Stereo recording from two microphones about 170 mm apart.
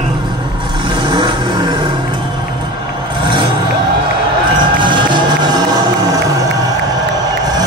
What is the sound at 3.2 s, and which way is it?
Vehicle, 30° right (ahead or behind).